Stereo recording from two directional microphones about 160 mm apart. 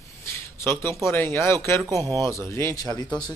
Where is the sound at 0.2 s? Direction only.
15° left (ahead or behind).